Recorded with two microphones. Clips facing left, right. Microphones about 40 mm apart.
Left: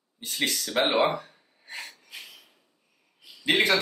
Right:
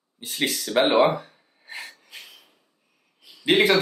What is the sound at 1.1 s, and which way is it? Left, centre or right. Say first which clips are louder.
Gasp: right 2 dB; centre.